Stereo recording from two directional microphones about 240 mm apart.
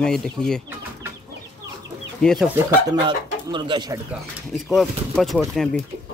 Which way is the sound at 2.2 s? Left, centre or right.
Centre.